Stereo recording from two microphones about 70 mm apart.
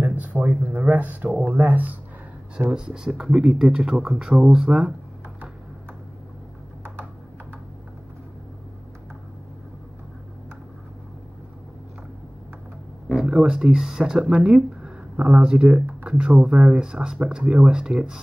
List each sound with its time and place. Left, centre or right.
0.0 s a sound: right
0.7 s speech: right
2.7 s speech: centre
13.1 s speech: centre